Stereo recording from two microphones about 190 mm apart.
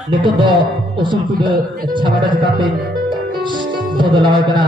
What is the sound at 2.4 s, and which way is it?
Music, 25° right (ahead or behind).